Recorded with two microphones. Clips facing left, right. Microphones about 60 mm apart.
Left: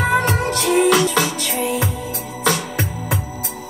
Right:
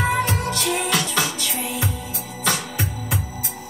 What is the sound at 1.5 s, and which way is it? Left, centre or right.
Music, left.